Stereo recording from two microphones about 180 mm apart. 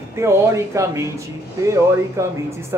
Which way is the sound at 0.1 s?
15° right (ahead or behind).